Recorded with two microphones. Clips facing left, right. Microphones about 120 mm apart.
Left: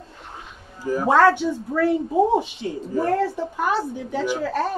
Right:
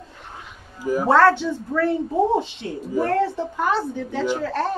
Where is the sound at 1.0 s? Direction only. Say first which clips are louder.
Even; 15° left (ahead or behind).